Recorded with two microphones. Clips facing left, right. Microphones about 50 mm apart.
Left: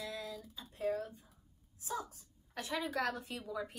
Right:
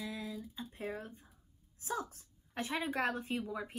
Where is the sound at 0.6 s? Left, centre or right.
Right.